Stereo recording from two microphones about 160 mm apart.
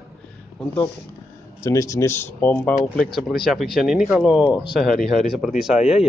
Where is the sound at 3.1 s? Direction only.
Centre (ahead or behind).